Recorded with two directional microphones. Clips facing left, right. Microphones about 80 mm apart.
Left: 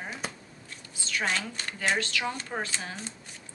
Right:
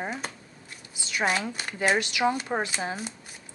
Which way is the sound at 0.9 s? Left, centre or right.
Centre.